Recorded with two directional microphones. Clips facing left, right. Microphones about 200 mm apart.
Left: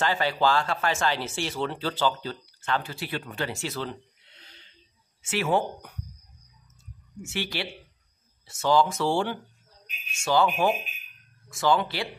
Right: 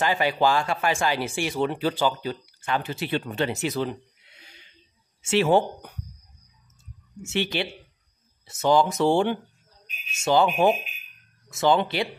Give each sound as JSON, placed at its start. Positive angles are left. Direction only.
{"t": 0.0, "sound": "speech", "side_deg": -15}
{"t": 5.2, "sound": "speech", "side_deg": -25}
{"t": 7.2, "sound": "speech", "side_deg": -20}